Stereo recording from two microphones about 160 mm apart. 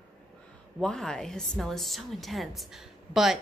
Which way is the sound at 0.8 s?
5° left (ahead or behind).